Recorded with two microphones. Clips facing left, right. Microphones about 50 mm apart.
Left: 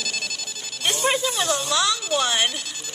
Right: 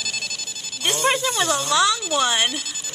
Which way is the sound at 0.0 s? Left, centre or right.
Centre.